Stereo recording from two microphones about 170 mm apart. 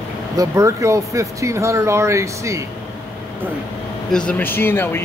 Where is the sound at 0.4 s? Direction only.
20° right (ahead or behind).